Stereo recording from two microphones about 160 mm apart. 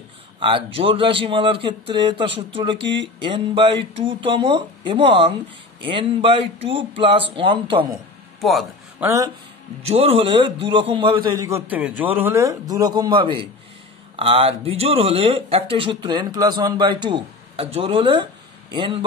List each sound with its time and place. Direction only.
0.4 s speech: 35° right (ahead or behind)
7.9 s a sound: centre (ahead or behind)
9.0 s speech: 20° right (ahead or behind)
9.8 s a man's voice: 40° right (ahead or behind)